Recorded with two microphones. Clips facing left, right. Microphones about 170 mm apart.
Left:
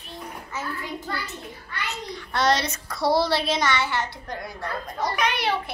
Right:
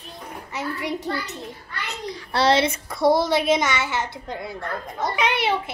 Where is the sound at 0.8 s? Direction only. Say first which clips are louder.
Right 6 dB; 75° right (ahead or behind).